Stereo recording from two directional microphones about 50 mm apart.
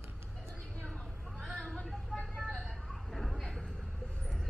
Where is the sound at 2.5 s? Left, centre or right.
Centre.